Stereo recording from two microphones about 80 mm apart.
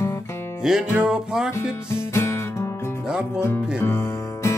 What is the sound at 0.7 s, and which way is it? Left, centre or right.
Music, centre.